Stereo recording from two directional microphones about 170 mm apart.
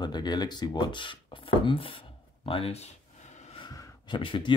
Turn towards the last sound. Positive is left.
turn(degrees=30)  # may be behind; listen again after turning